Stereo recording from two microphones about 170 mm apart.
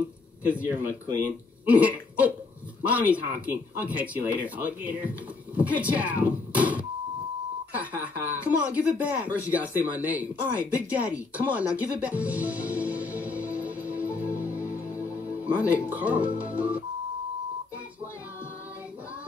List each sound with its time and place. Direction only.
0.5 s speech: 10° right (ahead or behind)
12.2 s music: 10° right (ahead or behind)
14.9 s music: 15° left (ahead or behind)
15.1 s music: 10° right (ahead or behind)